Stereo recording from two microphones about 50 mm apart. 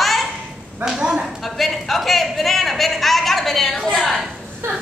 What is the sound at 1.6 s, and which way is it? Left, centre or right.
Speech, centre.